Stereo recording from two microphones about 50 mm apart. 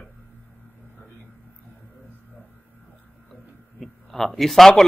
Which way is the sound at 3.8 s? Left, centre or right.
Centre.